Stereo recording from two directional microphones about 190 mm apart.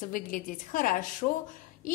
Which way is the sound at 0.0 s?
45° left (ahead or behind).